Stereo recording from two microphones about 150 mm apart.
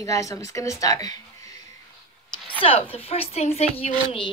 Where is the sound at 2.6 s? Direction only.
40° left (ahead or behind).